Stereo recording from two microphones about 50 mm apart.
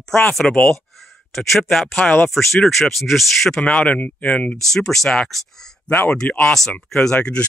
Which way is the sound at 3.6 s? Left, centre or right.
Left.